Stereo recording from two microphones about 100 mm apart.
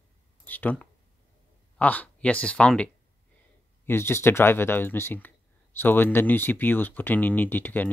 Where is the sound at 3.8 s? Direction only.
25° left (ahead or behind).